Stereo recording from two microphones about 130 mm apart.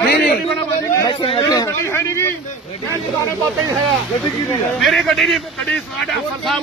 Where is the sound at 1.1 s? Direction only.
40° left (ahead or behind).